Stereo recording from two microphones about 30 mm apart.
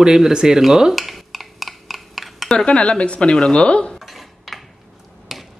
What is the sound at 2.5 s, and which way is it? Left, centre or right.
Speech, left.